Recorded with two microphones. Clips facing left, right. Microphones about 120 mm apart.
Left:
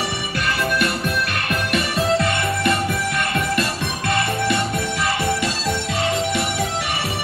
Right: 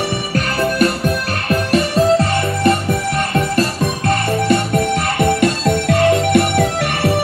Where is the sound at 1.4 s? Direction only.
35° right (ahead or behind).